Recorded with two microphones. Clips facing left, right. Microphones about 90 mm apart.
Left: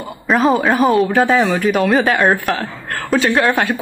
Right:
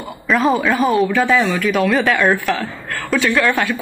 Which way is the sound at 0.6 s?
35° left (ahead or behind).